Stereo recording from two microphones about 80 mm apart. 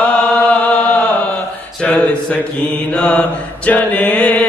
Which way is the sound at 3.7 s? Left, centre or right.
Centre.